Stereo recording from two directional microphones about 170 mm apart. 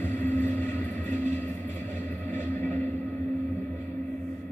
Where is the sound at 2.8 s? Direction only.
10° left (ahead or behind).